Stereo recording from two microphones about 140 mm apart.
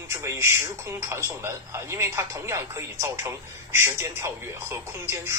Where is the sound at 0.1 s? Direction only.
20° right (ahead or behind).